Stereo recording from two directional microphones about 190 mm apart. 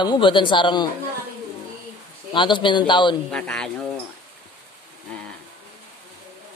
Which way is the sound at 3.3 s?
5° left (ahead or behind).